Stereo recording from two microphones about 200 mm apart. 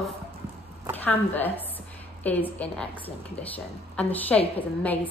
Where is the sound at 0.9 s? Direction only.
10° left (ahead or behind).